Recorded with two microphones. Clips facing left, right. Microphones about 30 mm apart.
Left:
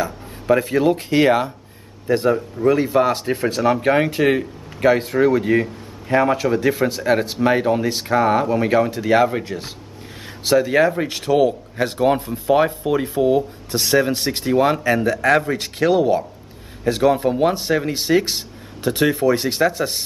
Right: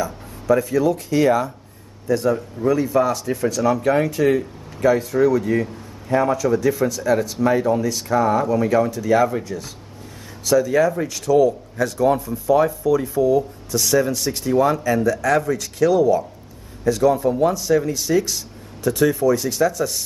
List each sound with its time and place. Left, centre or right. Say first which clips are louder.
0.0 s a man's voice: left 1 dB; left